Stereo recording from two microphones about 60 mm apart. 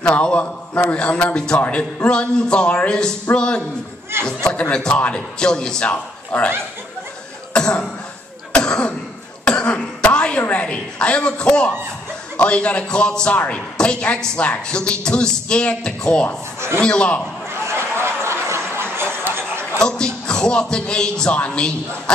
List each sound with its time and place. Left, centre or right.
0.0 s a man's voice: centre
7.5 s speech: centre
8.5 s cough: centre
9.5 s throat clearing: centre
10.5 s a man's voice: centre
17.5 s a sound: right
19.8 s speech: centre